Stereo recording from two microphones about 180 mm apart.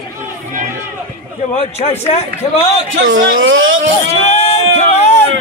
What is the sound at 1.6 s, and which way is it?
Speech, 35° left (ahead or behind).